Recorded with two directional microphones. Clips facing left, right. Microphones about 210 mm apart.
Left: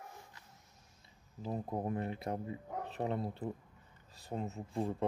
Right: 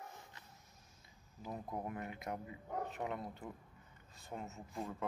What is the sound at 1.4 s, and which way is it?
Speech, 30° left (ahead or behind).